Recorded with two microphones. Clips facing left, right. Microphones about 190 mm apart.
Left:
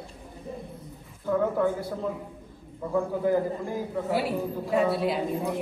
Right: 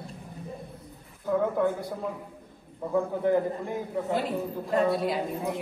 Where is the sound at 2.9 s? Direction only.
20° right (ahead or behind).